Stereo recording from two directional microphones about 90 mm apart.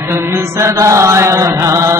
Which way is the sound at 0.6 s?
35° right (ahead or behind).